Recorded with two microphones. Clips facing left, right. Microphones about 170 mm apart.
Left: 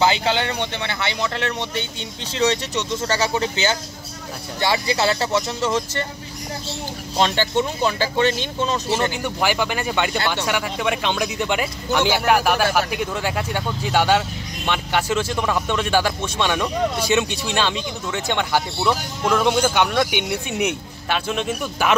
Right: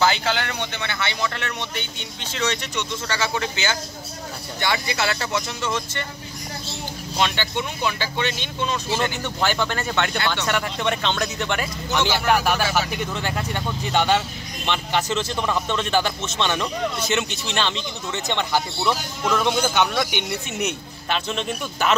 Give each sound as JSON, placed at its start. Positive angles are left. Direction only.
{"t": 0.0, "sound": "speech", "side_deg": 20}
{"t": 7.2, "sound": "speech", "side_deg": 40}
{"t": 9.2, "sound": "speech", "side_deg": 10}